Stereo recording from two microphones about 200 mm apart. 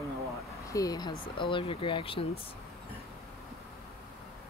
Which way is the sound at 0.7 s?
20° left (ahead or behind).